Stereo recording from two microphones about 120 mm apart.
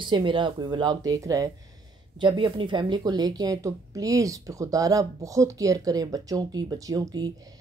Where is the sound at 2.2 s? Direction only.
45° right (ahead or behind).